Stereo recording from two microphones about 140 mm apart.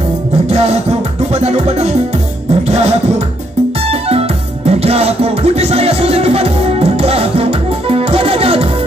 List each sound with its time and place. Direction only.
0.5 s music: 50° right (ahead or behind)
4.1 s music: 45° right (ahead or behind)